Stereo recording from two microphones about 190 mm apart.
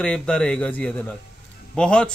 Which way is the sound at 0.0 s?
5° left (ahead or behind).